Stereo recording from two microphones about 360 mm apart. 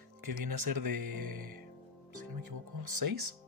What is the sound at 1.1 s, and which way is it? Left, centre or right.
Music, right.